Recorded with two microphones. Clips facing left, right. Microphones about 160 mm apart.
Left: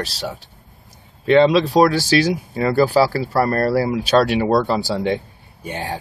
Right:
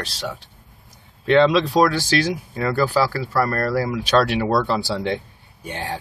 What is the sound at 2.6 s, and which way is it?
Speech, 25° left (ahead or behind).